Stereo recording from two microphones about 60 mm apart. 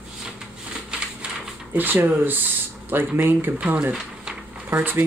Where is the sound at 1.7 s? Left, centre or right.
Right.